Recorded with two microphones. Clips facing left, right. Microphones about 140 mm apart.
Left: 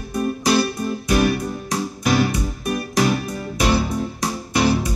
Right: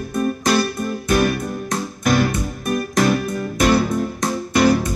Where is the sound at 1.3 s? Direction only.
50° right (ahead or behind).